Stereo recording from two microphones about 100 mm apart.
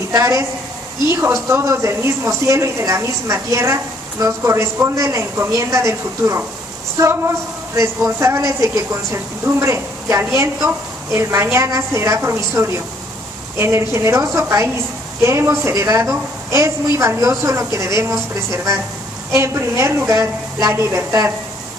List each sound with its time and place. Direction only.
0.1 s a woman's voice: 30° right (ahead or behind)